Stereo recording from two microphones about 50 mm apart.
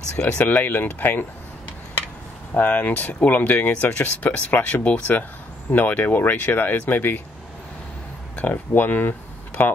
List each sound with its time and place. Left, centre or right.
0.5 s speech: left
2.5 s speech: left
8.4 s speech: left